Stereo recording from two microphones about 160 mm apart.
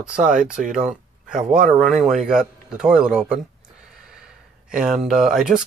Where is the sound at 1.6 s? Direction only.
55° right (ahead or behind).